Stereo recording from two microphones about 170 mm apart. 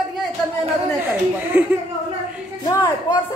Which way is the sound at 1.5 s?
10° right (ahead or behind).